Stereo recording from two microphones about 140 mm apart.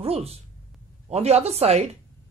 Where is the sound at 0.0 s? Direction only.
45° right (ahead or behind).